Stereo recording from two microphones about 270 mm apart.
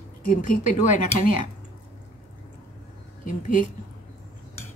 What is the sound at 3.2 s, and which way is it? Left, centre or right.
Speech, left.